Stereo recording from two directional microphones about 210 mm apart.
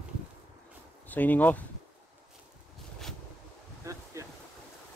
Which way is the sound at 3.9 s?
15° right (ahead or behind).